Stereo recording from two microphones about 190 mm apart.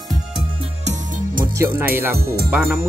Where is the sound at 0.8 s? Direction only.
35° right (ahead or behind).